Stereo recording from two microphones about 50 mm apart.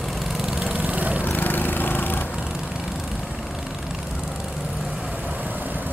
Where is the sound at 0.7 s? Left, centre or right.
Right.